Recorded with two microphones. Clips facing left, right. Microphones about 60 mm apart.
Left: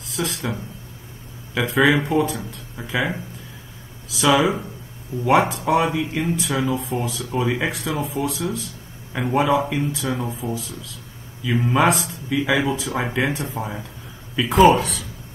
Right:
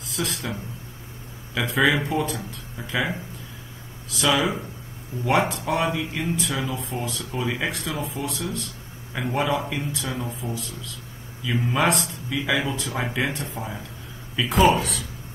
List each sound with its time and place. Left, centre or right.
0.0 s speech: centre
4.1 s speech: centre
10.0 s speech: centre
11.4 s speech: centre
13.6 s speech: centre